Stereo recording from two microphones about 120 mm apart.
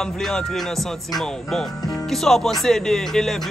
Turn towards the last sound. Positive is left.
turn(degrees=5)  # may be behind; listen again after turning